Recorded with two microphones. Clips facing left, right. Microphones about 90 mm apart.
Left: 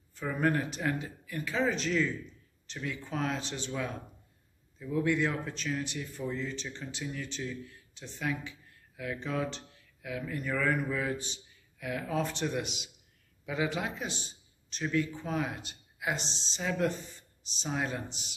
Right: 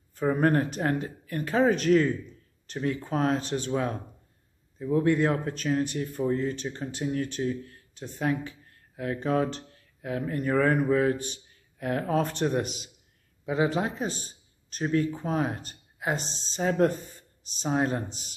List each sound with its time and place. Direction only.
0.4 s a man's voice: 45° right (ahead or behind)